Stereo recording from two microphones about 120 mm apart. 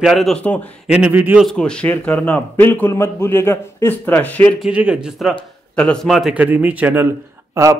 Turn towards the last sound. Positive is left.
turn(degrees=-20)  # may be behind; listen again after turning